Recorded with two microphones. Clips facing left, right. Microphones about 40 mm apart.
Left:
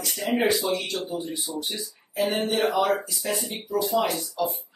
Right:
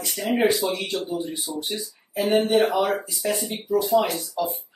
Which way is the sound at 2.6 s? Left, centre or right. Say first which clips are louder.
Right 1 dB; centre.